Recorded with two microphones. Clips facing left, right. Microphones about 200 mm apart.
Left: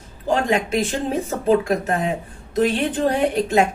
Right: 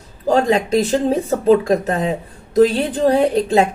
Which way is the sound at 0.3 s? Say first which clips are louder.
Right 5 dB; 35° right (ahead or behind).